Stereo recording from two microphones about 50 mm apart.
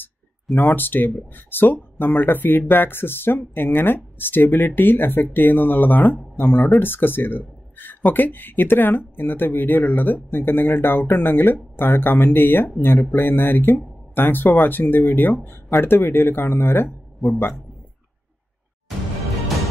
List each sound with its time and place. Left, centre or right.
0.6 s speech: left
19.2 s music: centre